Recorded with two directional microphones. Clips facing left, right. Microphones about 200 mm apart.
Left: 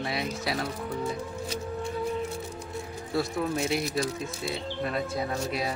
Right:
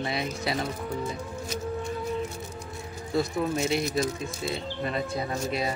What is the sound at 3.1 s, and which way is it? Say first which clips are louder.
Speech: right 2 dB; centre (ahead or behind).